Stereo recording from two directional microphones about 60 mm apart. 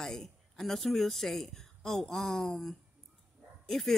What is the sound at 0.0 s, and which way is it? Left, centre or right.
Speech, centre.